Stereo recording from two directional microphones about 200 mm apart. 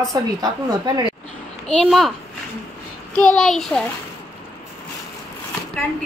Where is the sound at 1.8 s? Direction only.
Centre (ahead or behind).